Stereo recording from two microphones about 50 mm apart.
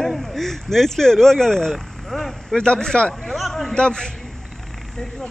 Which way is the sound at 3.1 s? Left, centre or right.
Centre.